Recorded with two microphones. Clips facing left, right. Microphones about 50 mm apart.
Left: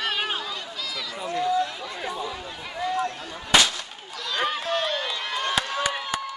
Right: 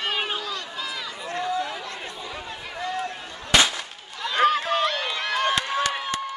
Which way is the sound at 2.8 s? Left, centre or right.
Centre.